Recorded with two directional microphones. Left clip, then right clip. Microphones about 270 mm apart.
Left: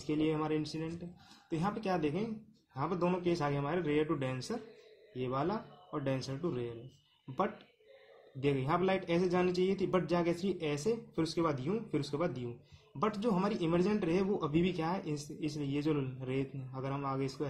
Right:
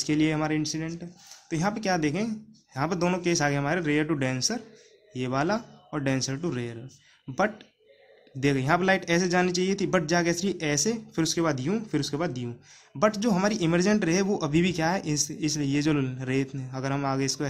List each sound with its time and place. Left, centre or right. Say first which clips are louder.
0.0 s speech: right 8 dB; right
8.4 s speech: right 8 dB; right